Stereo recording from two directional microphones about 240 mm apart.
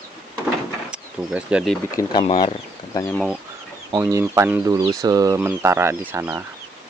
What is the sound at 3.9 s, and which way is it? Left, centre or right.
Speech, centre.